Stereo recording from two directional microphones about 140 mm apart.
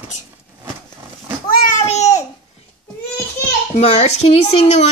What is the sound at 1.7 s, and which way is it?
Babbling, 55° left (ahead or behind).